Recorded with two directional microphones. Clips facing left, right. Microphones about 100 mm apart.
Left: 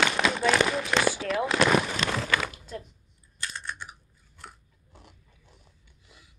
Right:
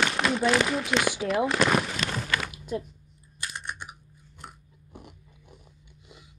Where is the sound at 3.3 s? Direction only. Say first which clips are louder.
Even; 15° right (ahead or behind).